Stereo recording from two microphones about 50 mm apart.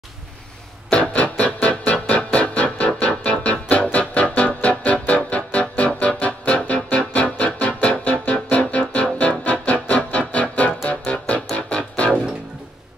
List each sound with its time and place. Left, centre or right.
1.1 s music: left